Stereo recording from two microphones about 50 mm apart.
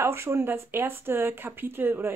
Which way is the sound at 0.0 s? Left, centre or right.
Right.